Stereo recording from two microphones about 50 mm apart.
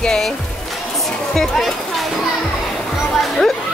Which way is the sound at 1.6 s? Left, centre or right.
Centre.